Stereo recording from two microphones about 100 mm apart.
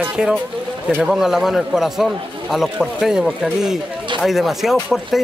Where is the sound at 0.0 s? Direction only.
10° right (ahead or behind).